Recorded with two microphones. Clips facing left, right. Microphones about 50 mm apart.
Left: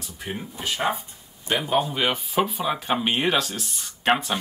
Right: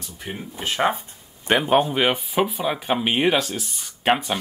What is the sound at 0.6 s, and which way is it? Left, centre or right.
A man's voice, right.